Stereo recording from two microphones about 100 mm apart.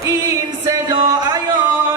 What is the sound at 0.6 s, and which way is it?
Music, 35° right (ahead or behind).